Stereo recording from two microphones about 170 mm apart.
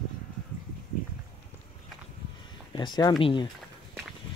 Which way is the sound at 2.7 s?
25° left (ahead or behind).